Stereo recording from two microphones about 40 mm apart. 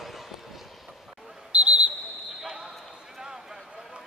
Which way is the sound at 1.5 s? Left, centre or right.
Right.